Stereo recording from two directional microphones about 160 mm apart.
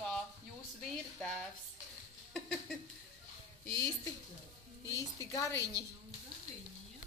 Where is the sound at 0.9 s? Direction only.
5° left (ahead or behind).